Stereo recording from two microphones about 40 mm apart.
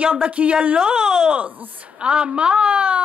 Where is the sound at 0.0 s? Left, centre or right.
Right.